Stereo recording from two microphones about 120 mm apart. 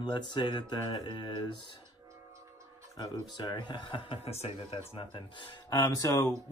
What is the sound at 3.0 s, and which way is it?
Speech, 35° left (ahead or behind).